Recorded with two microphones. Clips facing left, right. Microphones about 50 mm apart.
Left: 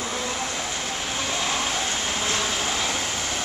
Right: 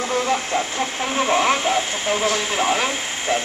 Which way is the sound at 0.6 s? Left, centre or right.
Right.